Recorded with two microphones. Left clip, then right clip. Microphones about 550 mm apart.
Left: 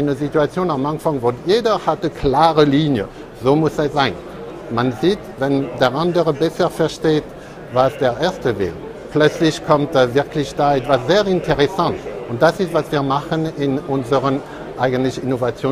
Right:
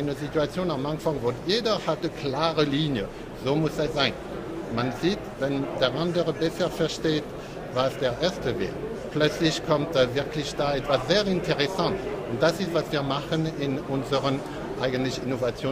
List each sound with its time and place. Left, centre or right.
0.1 s speech: left
14.8 s speech: left